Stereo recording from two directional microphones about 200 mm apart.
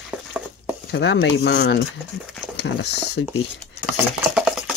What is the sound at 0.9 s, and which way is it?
Speech, 60° left (ahead or behind).